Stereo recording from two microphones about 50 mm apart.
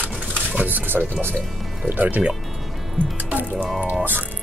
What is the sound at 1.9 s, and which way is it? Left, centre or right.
Speech, right.